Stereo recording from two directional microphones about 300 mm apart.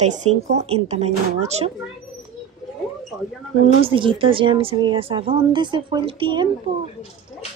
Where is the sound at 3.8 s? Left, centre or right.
Centre.